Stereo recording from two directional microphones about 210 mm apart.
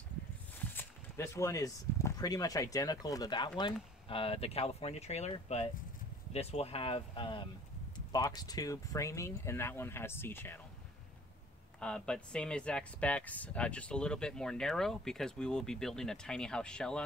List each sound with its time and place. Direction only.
0.6 s speech: 10° left (ahead or behind)
11.8 s speech: 5° left (ahead or behind)